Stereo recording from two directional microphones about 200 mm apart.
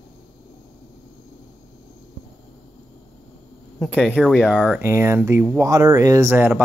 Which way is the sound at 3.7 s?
5° left (ahead or behind).